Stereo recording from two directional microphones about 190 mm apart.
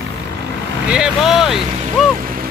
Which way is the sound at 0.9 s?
5° right (ahead or behind).